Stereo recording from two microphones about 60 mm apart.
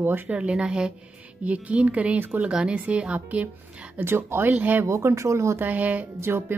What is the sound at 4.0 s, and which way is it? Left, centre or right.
Speech, right.